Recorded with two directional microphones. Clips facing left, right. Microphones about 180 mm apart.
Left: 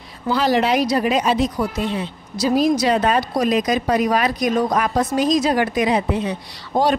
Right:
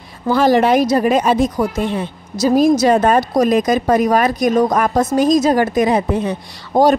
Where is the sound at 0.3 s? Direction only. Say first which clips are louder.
Right 5 dB; 50° right (ahead or behind).